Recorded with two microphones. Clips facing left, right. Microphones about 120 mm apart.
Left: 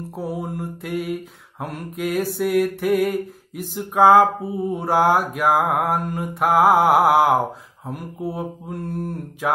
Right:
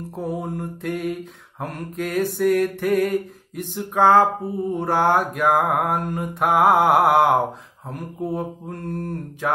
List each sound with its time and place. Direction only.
0.1 s mantra: 5° left (ahead or behind)